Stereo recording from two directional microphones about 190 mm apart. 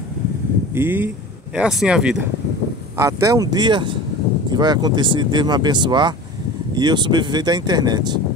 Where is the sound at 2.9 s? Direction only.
15° right (ahead or behind).